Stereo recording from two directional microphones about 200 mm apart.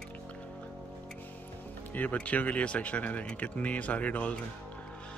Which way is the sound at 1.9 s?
10° left (ahead or behind).